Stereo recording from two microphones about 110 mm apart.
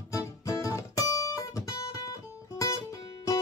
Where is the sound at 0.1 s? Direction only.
30° left (ahead or behind).